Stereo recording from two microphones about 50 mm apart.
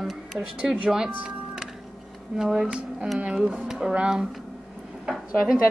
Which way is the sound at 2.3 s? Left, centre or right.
Centre.